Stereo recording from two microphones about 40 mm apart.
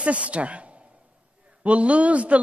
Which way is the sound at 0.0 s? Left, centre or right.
Right.